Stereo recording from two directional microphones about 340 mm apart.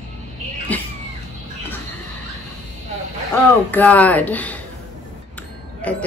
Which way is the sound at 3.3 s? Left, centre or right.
Centre.